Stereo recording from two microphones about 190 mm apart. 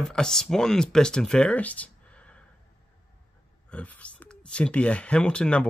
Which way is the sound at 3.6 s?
5° left (ahead or behind).